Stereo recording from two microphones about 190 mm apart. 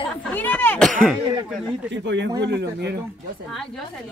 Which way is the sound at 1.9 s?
70° right (ahead or behind).